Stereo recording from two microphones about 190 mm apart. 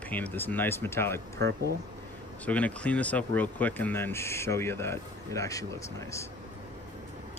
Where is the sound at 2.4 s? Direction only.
5° left (ahead or behind).